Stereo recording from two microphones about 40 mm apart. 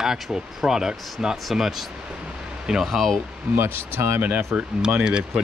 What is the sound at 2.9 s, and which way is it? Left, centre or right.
Speech, centre.